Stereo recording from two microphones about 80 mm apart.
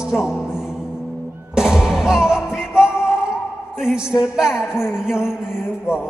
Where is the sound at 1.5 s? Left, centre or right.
Centre.